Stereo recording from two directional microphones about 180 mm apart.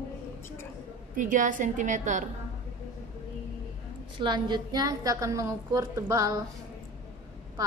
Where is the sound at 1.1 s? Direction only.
45° right (ahead or behind).